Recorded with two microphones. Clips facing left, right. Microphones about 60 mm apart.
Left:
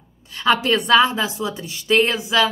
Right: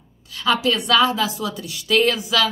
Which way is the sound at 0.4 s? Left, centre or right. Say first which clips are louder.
Left 2 dB; left.